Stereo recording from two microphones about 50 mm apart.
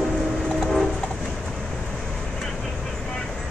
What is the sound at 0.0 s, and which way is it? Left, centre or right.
Train, centre.